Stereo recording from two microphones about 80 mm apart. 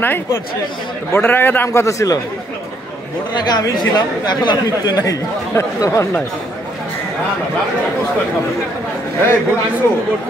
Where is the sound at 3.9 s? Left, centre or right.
Left.